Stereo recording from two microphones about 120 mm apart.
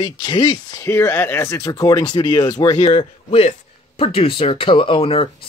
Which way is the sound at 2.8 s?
55° left (ahead or behind).